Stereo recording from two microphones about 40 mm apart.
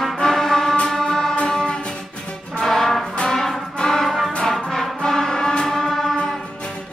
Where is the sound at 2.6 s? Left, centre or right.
Centre.